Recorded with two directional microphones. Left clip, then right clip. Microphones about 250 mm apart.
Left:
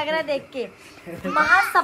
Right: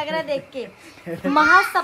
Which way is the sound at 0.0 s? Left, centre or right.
Centre.